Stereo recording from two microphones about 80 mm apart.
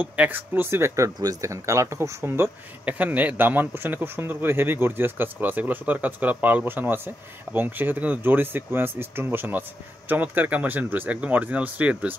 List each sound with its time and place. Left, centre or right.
0.0 s speech: centre
2.8 s speech: centre